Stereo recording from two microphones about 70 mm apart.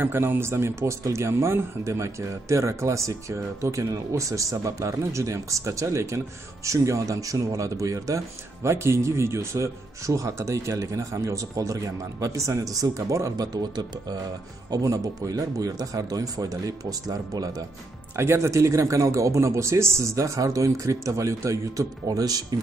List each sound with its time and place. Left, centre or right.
0.0 s speech: right
13.6 s speech: right
14.7 s speech: right
18.1 s speech: right